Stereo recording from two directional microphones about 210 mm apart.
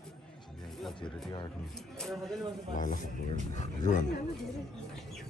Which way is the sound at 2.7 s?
40° left (ahead or behind).